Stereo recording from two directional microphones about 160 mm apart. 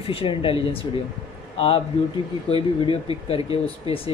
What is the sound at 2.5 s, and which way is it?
Speech, 35° left (ahead or behind).